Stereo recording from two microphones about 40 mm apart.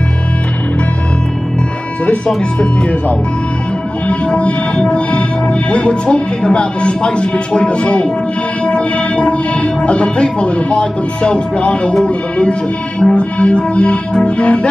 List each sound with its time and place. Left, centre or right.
2.6 s music: left